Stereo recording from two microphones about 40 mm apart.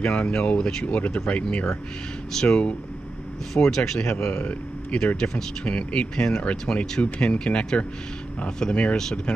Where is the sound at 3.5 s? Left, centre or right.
Centre.